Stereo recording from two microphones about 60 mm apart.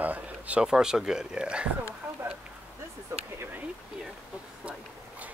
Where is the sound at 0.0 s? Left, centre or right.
Right.